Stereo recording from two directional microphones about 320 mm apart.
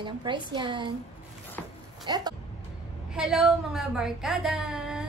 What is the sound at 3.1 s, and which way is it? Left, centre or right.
A woman's voice, centre.